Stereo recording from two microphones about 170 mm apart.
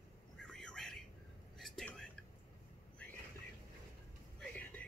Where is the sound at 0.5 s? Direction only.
Centre (ahead or behind).